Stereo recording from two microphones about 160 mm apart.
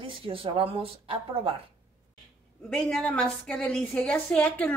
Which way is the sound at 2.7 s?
5° left (ahead or behind).